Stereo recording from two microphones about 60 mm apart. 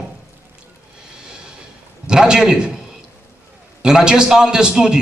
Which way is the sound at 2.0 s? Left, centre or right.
Centre.